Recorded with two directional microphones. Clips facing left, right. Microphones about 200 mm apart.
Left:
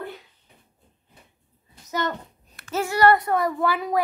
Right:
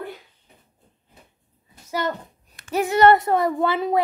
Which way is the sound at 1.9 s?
10° right (ahead or behind).